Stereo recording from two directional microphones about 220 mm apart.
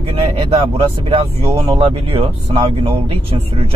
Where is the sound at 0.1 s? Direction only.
25° right (ahead or behind).